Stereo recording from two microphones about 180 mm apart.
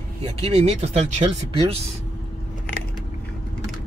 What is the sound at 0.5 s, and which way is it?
Speech, 35° right (ahead or behind).